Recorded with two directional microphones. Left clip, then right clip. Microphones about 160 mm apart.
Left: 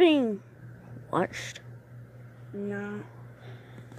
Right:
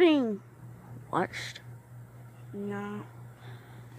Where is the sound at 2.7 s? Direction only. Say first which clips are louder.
Left 1 dB; 15° right (ahead or behind).